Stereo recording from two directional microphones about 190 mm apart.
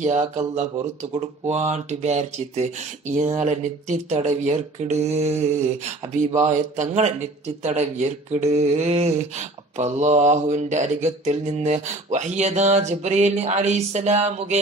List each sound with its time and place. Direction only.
0.0 s a man's voice: 35° right (ahead or behind)